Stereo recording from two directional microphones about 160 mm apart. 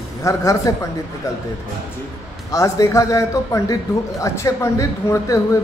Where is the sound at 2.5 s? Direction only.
20° left (ahead or behind).